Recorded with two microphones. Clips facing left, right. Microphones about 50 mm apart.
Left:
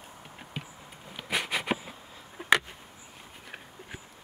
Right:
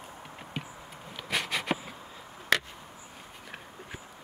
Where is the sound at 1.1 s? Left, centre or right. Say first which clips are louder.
Left 1 dB; centre.